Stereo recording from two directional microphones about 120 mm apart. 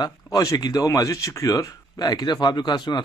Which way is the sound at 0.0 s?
30° left (ahead or behind).